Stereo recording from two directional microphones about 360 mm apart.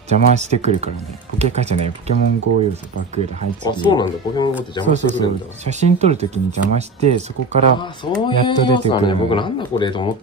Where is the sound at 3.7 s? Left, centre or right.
Centre.